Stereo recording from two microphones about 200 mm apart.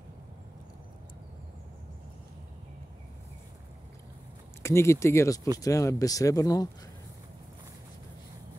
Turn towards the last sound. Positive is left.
turn(degrees=15)  # may be behind; listen again after turning